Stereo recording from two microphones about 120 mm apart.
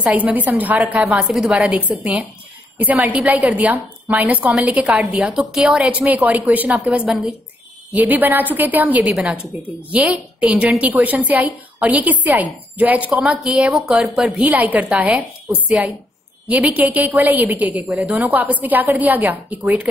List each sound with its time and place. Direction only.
0.0 s a woman's voice: 10° right (ahead or behind)